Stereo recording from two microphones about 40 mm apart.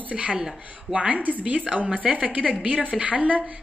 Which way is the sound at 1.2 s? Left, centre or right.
Right.